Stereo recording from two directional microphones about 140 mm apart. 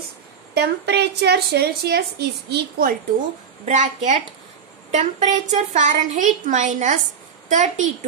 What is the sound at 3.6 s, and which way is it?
A woman's voice, 60° right (ahead or behind).